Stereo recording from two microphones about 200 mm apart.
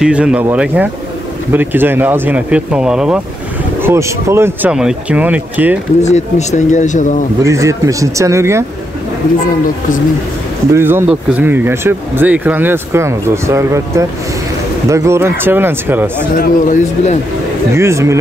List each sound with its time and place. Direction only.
0.0 s speech: 5° right (ahead or behind)
6.0 s speech: 35° left (ahead or behind)
7.4 s speech: 15° right (ahead or behind)
10.7 s speech: 10° right (ahead or behind)
16.3 s speech: 40° left (ahead or behind)
17.7 s speech: 15° right (ahead or behind)